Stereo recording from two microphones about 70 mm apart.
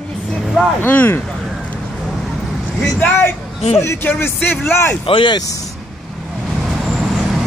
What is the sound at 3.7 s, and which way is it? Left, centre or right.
Speech, left.